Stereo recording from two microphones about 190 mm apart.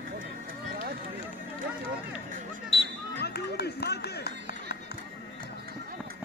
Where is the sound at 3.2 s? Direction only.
60° left (ahead or behind).